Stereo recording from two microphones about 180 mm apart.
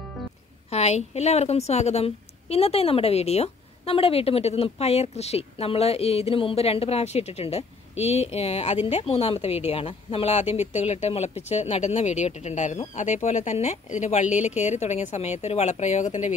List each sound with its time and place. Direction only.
0.7 s a woman's voice: 35° left (ahead or behind)